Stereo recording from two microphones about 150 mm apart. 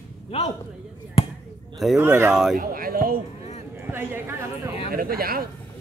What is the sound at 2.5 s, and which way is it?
Speech, 75° right (ahead or behind).